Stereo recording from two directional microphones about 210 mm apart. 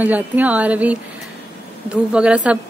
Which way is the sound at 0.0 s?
5° right (ahead or behind).